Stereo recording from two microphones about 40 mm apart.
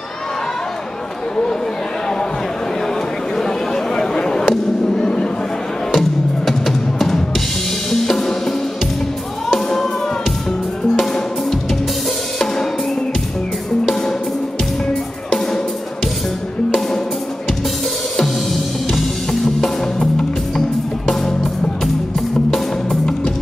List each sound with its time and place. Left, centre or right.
3.9 s a sound: centre
4.8 s speech: centre
5.9 s music: centre
7.9 s music: centre
18.9 s music: centre